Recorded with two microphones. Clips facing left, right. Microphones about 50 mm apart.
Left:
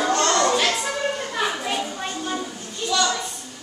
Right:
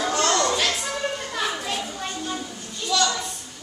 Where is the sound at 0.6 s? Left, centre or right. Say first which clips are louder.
Left 3 dB; centre.